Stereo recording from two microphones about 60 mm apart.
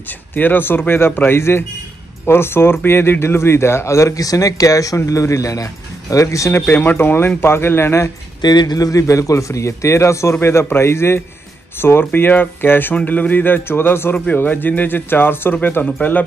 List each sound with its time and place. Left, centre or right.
0.3 s a man's voice: left
6.7 s speech: left
8.7 s a man's voice: left
14.1 s speech: left